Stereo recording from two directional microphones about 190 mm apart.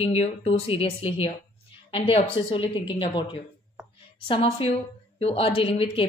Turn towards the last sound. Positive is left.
turn(degrees=30)  # may be behind; listen again after turning